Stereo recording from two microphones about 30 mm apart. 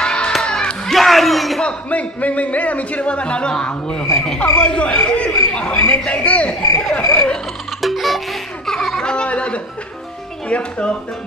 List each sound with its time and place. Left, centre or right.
0.0 s music: left
0.9 s a sound: centre
1.9 s speech: left
7.0 s speech: left
7.8 s music: centre
8.6 s music: centre
9.0 s speech: left